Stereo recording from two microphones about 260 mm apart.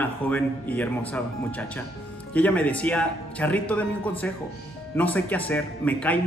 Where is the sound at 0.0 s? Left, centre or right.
Centre.